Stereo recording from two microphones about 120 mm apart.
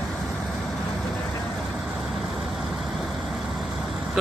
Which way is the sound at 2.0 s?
Centre (ahead or behind).